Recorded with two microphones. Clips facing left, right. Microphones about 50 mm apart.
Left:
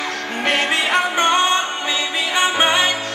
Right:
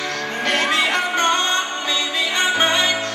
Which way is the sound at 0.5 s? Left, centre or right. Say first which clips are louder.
Left 1 dB; centre.